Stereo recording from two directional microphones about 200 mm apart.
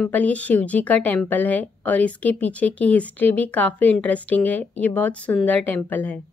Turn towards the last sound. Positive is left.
turn(degrees=10)  # may be behind; listen again after turning